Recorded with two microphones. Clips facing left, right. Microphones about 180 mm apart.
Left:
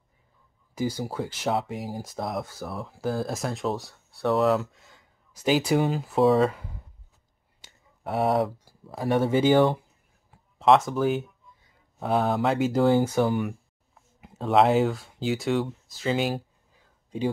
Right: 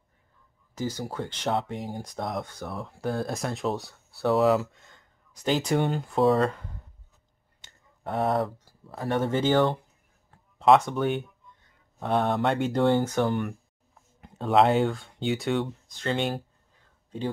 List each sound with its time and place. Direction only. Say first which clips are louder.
0.7 s speech: left 3 dB; 10° left (ahead or behind)